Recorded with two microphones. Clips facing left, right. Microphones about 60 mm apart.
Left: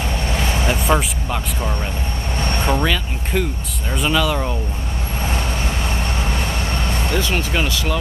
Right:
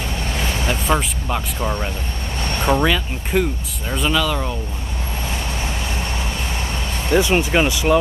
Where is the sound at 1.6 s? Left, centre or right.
Centre.